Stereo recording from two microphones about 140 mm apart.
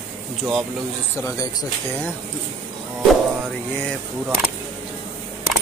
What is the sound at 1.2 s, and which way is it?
Speech, 25° left (ahead or behind).